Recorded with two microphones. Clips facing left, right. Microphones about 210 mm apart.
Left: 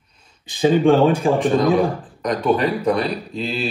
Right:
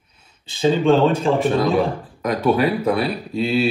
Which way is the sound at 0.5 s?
15° left (ahead or behind).